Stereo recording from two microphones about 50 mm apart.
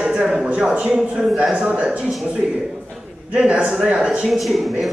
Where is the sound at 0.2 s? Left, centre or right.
Centre.